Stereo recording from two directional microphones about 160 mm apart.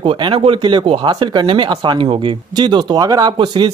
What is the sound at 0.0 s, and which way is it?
Speech, 30° right (ahead or behind).